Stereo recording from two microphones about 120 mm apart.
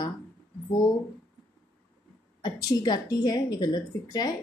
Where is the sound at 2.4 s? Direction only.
35° left (ahead or behind).